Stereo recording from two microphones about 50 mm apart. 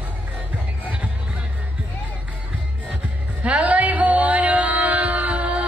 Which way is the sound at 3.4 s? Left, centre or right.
Right.